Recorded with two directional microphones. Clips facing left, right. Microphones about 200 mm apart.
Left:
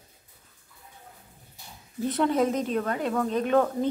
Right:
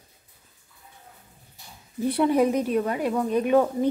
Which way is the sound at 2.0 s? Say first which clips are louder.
Right 3 dB; 10° right (ahead or behind).